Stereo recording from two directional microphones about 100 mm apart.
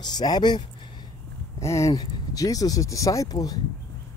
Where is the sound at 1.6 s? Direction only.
30° left (ahead or behind).